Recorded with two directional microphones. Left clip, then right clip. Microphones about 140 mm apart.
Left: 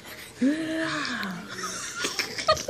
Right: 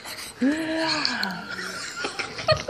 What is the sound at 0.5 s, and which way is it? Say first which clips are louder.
Speech: right 3 dB; 25° left (ahead or behind).